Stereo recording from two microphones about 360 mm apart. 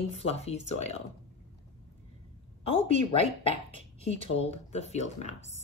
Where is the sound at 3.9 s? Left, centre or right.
Centre.